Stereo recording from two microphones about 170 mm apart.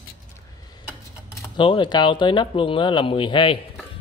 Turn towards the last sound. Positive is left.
turn(degrees=30)  # may be behind; listen again after turning